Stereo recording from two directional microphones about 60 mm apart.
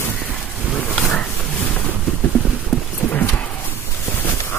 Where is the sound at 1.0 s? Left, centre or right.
Centre.